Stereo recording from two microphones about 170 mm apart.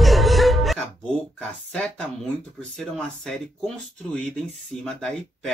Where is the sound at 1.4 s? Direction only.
5° left (ahead or behind).